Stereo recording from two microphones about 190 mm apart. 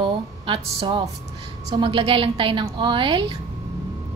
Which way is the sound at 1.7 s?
25° right (ahead or behind).